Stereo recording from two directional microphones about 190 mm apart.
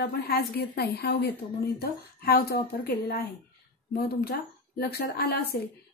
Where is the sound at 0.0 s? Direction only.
55° left (ahead or behind).